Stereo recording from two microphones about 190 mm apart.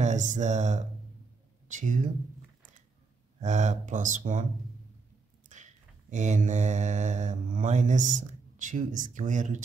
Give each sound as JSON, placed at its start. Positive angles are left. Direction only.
{"t": 0.0, "sound": "a sound", "side_deg": -40}
{"t": 1.7, "sound": "speech", "side_deg": -40}
{"t": 3.3, "sound": "speech", "side_deg": -40}
{"t": 5.5, "sound": "mantra", "side_deg": -40}